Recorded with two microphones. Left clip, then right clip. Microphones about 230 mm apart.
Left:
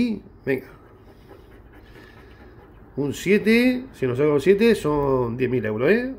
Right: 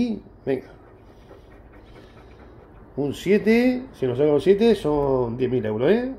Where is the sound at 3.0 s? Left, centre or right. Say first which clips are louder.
Even; centre.